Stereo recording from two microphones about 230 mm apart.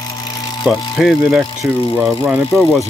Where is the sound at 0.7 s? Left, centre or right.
Centre.